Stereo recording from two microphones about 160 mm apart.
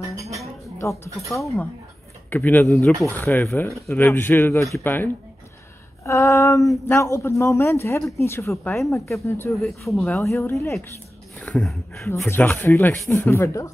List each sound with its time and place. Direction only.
0.7 s speech: 20° left (ahead or behind)
1.4 s speech: centre (ahead or behind)
2.2 s speech: 10° left (ahead or behind)
9.5 s speech: centre (ahead or behind)
10.2 s speech: 15° left (ahead or behind)